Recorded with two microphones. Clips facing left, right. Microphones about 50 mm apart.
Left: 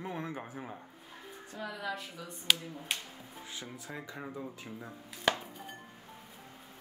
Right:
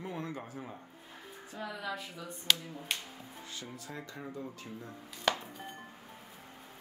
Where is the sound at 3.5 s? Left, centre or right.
Left.